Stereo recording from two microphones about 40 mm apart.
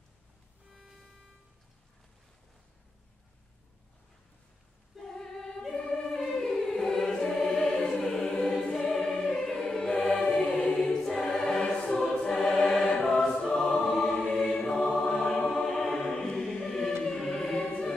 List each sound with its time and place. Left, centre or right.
0.7 s music: centre
5.1 s choir: centre
12.0 s choir: centre
13.8 s music: centre
14.2 s choir: centre
14.7 s music: centre
15.5 s choir: centre
17.6 s choir: left